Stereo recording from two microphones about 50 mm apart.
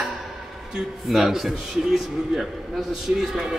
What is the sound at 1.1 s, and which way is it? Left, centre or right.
A man's voice, centre.